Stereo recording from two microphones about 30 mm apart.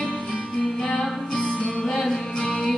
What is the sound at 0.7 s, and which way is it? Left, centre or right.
Music, left.